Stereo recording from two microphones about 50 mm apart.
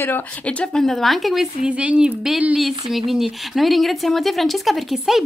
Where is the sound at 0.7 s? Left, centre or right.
Centre.